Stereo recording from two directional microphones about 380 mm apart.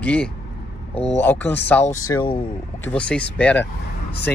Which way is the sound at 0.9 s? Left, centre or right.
Centre.